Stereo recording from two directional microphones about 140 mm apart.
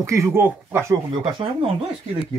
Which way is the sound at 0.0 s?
20° right (ahead or behind).